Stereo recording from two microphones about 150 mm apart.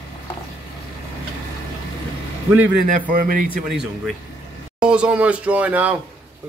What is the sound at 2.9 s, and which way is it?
Speech, 65° right (ahead or behind).